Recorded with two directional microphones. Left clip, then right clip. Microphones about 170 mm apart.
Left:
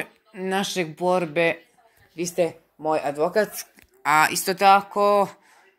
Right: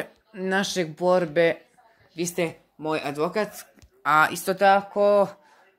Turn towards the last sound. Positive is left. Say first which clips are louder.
# even
turn(degrees=-15)  # may be behind; listen again after turning